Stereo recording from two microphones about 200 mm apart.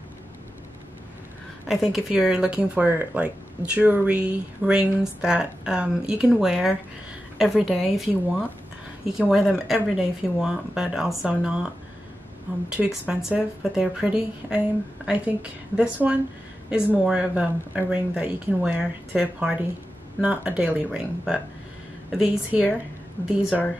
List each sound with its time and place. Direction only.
1.7 s speech: centre (ahead or behind)